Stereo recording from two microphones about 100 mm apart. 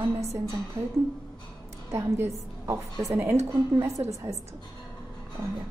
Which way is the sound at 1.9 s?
30° right (ahead or behind).